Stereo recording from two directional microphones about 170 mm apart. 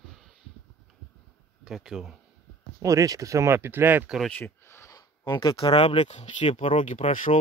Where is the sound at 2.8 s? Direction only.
20° right (ahead or behind).